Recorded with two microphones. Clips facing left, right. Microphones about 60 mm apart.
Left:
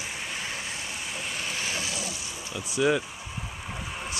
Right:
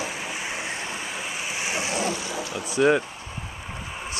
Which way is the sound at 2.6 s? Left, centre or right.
Right.